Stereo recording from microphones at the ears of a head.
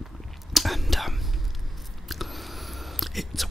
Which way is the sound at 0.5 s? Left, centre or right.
Centre.